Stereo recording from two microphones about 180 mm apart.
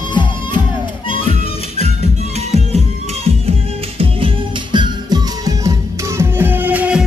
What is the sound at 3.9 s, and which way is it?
Music, 30° right (ahead or behind).